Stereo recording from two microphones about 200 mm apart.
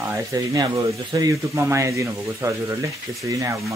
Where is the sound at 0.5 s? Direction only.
20° right (ahead or behind).